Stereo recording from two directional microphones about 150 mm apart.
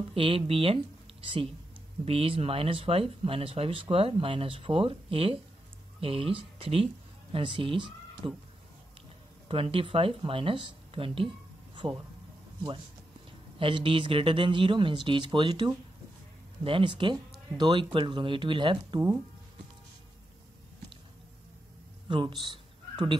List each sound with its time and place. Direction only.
0.1 s speech: 35° right (ahead or behind)
9.5 s speech: 40° right (ahead or behind)
11.8 s speech: 20° right (ahead or behind)
13.6 s speech: 35° right (ahead or behind)
22.0 s a sound: 30° right (ahead or behind)